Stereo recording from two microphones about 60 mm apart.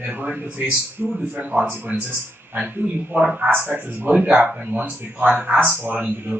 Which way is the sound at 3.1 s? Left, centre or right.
Centre.